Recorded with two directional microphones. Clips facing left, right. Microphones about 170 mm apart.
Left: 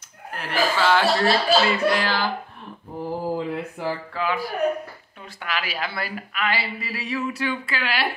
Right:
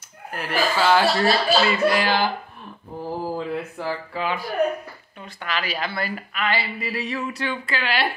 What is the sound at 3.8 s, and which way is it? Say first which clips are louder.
Speech: left 2 dB; 15° left (ahead or behind).